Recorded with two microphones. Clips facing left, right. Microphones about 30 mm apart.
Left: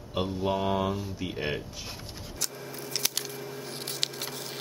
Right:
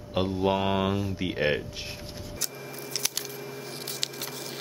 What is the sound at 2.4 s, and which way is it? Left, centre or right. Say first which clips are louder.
Scissors: left 2 dB; centre.